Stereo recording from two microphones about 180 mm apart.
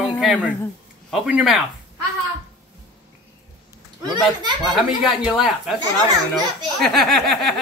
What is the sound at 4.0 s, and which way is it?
Speech, 25° right (ahead or behind).